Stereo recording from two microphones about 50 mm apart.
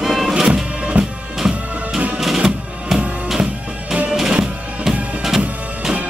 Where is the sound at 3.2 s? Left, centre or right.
Centre.